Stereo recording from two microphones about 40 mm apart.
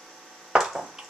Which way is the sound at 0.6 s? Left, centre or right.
Centre.